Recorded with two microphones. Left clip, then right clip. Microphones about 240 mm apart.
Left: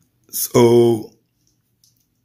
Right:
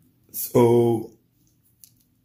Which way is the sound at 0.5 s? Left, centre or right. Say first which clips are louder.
Left 5 dB; left.